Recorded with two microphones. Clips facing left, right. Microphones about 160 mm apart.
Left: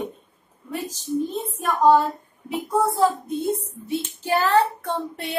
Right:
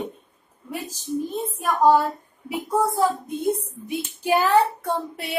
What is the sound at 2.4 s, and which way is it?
Speech, 10° right (ahead or behind).